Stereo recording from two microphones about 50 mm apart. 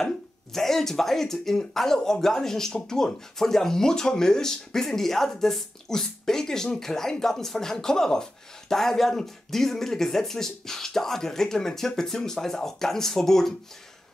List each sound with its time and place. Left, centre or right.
0.0 s speech: centre